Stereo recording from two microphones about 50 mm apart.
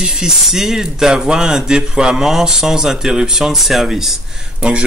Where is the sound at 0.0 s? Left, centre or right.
Centre.